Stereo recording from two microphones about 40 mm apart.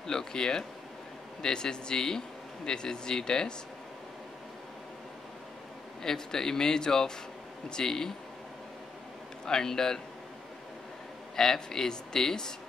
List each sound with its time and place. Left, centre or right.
0.0 s speech: centre
6.0 s speech: centre
9.5 s speech: centre
11.3 s speech: centre